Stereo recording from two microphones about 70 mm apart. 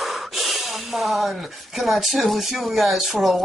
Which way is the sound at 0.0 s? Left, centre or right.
Centre.